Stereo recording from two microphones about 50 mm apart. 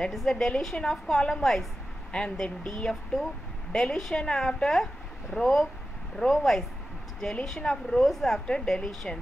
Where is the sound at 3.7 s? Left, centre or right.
Centre.